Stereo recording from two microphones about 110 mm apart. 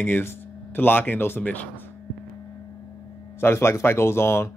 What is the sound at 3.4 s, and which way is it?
Speech, 20° left (ahead or behind).